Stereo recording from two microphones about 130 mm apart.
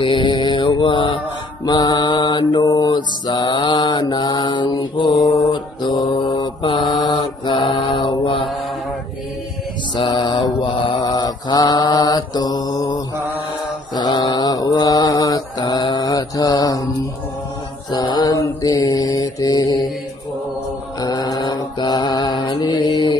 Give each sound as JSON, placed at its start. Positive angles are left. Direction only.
{"t": 0.0, "sound": "mantra", "side_deg": 40}
{"t": 9.9, "sound": "mantra", "side_deg": 35}
{"t": 17.9, "sound": "mantra", "side_deg": 30}
{"t": 21.0, "sound": "mantra", "side_deg": 30}